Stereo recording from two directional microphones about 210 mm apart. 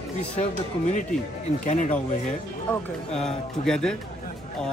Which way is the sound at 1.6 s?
35° left (ahead or behind).